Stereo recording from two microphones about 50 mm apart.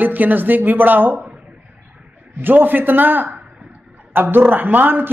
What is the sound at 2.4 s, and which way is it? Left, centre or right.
A man's voice, right.